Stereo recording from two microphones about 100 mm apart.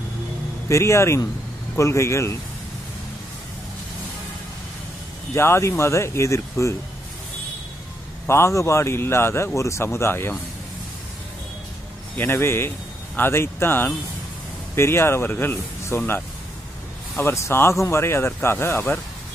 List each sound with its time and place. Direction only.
0.7 s speech: 30° left (ahead or behind)
5.3 s speech: 25° left (ahead or behind)
8.3 s speech: 30° left (ahead or behind)
12.2 s speech: 25° left (ahead or behind)
17.2 s speech: 25° left (ahead or behind)